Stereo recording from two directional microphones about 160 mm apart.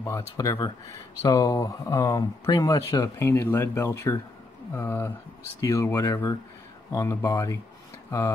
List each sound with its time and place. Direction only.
0.0 s speech: 20° left (ahead or behind)